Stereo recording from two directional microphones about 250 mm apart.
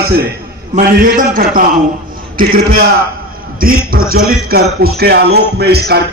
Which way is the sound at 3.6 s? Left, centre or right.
Right.